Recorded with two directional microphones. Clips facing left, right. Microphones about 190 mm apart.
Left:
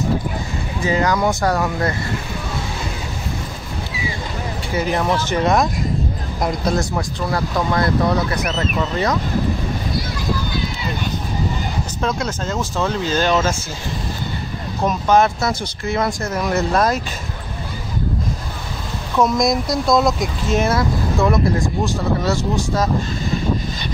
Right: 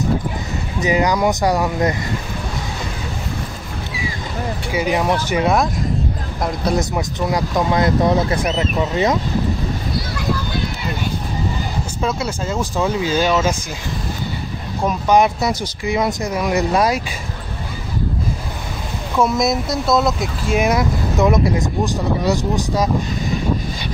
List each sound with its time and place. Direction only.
0.7 s speech: 15° right (ahead or behind)
4.7 s speech: 10° right (ahead or behind)
6.7 s speech: 20° right (ahead or behind)
12.0 s speech: 5° right (ahead or behind)
14.9 s speech: 15° right (ahead or behind)
19.1 s speech: 5° right (ahead or behind)